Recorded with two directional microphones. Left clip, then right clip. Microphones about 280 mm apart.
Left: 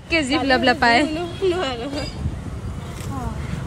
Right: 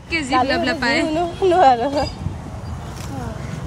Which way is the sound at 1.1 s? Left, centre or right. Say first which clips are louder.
Right 6 dB; right.